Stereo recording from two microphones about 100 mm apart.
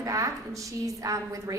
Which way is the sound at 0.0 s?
35° right (ahead or behind).